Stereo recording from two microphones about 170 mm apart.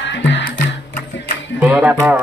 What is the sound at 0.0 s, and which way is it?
Music, 90° left.